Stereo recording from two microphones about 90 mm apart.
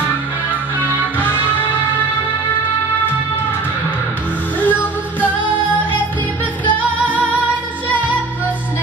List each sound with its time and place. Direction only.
4.6 s music: 20° left (ahead or behind)